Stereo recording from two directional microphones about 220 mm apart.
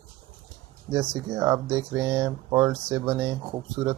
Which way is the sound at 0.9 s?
10° right (ahead or behind).